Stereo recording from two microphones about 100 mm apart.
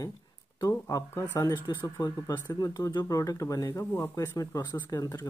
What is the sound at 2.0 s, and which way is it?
Speech, 40° left (ahead or behind).